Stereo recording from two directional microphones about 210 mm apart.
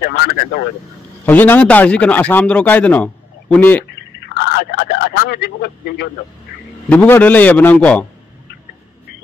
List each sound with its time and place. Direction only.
0.0 s speech: 50° left (ahead or behind)
1.2 s a man's voice: 10° left (ahead or behind)
4.3 s speech: 50° left (ahead or behind)
6.9 s a man's voice: 10° left (ahead or behind)